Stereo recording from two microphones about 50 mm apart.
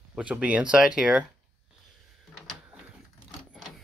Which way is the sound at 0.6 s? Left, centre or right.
Centre.